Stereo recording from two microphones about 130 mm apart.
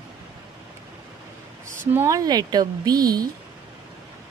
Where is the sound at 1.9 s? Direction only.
25° right (ahead or behind).